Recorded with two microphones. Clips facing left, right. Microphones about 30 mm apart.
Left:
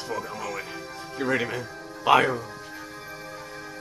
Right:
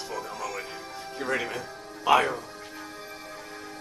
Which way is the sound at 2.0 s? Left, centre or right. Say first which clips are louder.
Left 2 dB; centre.